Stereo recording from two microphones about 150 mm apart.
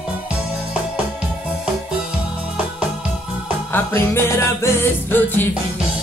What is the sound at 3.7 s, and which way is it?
Music, 15° left (ahead or behind).